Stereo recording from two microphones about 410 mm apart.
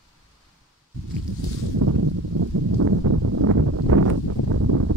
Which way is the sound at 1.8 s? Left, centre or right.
Right.